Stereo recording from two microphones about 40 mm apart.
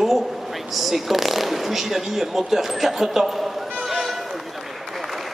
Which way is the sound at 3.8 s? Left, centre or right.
Centre.